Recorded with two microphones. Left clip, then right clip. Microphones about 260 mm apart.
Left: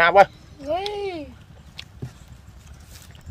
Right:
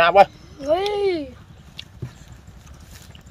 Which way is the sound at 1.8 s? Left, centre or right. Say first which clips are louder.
Right 1 dB; centre.